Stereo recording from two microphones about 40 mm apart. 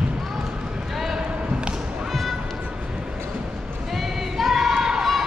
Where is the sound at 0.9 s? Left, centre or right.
Centre.